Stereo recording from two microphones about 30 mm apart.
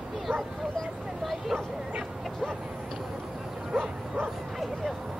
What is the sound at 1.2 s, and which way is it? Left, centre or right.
Speech, centre.